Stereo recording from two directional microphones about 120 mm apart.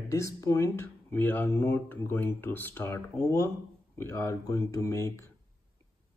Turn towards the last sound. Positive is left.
turn(degrees=25)  # may be behind; listen again after turning